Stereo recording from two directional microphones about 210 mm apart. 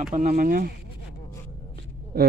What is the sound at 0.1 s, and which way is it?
Speech, 35° right (ahead or behind).